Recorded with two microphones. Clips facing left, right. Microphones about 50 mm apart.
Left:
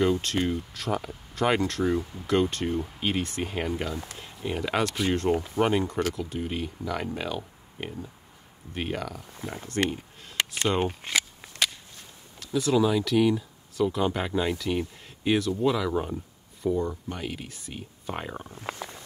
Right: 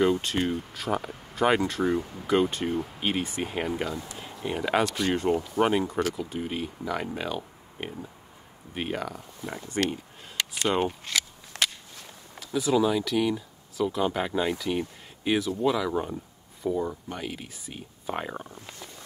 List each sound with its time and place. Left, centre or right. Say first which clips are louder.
0.0 s speech: right 1 dB; centre
5.3 s speech: even; left
5.6 s speech: right 1 dB; centre
10.8 s speech: left 1 dB; centre
11.5 s walk: even; right
12.4 s speech: even; centre
18.6 s speech: left 8 dB; left